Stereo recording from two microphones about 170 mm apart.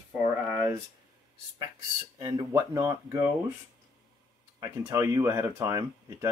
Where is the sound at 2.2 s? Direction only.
20° right (ahead or behind).